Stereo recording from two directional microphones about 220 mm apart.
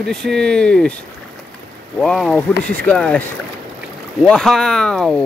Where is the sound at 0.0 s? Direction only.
5° left (ahead or behind).